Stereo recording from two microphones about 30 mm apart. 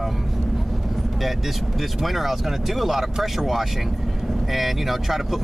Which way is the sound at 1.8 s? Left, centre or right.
Centre.